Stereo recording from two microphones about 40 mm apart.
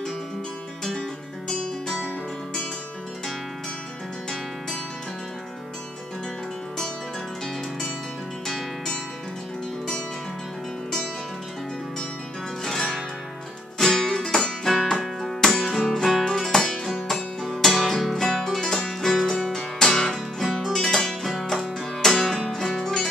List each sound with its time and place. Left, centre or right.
1.5 s music: centre
8.5 s music: centre
12.6 s music: centre